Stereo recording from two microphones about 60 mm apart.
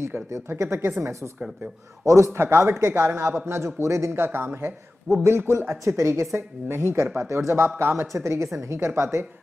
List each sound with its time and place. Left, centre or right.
0.5 s a man's voice: right
2.0 s a man's voice: right
4.1 s a man's voice: right
8.1 s a man's voice: right
8.7 s a man's voice: right